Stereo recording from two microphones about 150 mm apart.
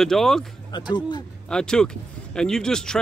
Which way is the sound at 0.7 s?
30° left (ahead or behind).